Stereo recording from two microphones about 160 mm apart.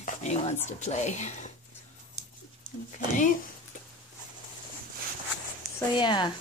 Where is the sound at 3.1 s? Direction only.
55° left (ahead or behind).